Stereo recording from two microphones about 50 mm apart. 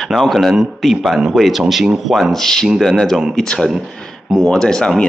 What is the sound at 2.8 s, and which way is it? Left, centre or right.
Speech, centre.